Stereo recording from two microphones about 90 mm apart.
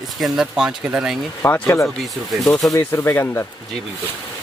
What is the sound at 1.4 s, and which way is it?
Speech, 25° left (ahead or behind).